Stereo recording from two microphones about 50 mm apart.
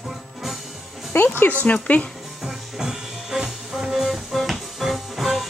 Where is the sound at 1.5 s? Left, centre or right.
Left.